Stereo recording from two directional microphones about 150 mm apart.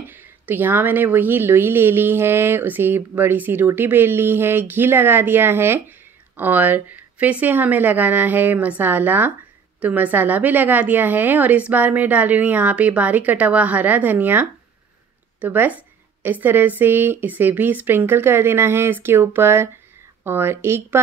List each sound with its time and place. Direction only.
0.5 s a woman's voice: 15° right (ahead or behind)